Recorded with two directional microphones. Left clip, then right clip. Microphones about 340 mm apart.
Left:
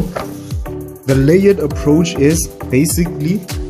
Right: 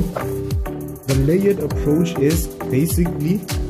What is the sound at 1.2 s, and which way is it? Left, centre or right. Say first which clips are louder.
A man's voice: left 6 dB; centre.